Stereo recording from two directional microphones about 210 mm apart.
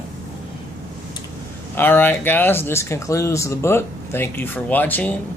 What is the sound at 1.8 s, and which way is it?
Speech, 10° left (ahead or behind).